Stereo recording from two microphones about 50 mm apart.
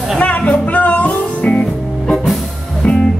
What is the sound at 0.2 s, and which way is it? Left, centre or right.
Music, left.